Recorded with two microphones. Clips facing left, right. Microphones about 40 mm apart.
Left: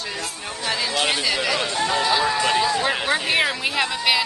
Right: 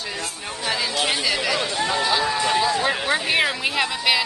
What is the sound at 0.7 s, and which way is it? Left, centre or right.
A man's voice, centre.